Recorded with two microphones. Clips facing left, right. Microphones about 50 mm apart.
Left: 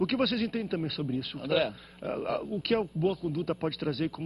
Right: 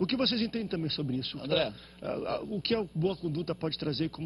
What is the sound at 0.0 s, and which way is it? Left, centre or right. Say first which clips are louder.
A man's voice: left 2 dB; centre.